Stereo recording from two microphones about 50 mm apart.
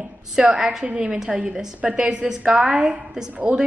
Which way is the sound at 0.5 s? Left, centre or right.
Centre.